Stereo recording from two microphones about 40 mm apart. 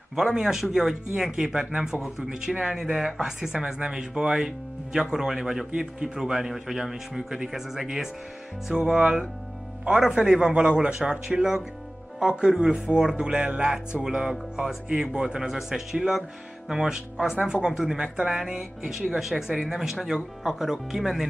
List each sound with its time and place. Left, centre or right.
0.2 s speech: centre
3.2 s speech: centre
8.8 s speech: centre
10.6 s speech: right
11.0 s speech: centre
14.0 s speech: centre
15.9 s speech: centre
18.6 s speech: centre